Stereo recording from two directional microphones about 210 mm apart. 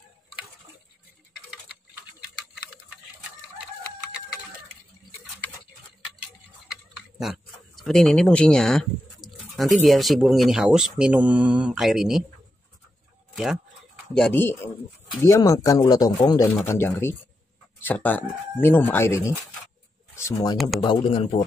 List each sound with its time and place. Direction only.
7.2 s speech: centre (ahead or behind)
13.3 s speech: centre (ahead or behind)
20.8 s a man's voice: 25° left (ahead or behind)